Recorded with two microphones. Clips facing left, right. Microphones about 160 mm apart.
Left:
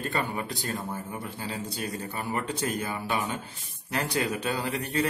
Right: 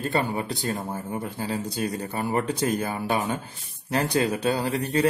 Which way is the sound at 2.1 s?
40° right (ahead or behind).